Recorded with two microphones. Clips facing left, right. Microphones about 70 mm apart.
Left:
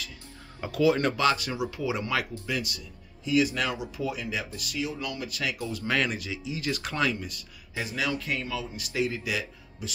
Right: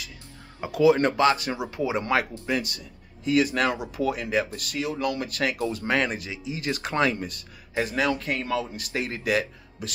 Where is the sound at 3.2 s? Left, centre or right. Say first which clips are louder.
Right 3 dB; right.